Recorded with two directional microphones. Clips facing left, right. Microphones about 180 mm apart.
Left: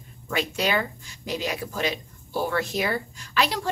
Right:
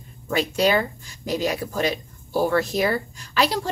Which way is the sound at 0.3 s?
35° right (ahead or behind).